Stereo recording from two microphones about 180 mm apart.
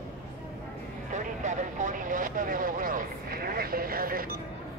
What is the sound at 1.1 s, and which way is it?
Vehicle, 45° right (ahead or behind).